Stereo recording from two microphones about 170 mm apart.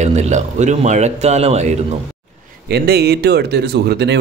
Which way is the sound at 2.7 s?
70° right (ahead or behind).